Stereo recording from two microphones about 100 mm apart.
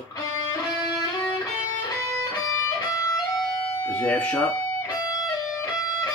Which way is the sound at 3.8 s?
15° left (ahead or behind).